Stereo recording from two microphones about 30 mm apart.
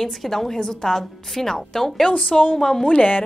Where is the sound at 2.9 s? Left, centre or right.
Left.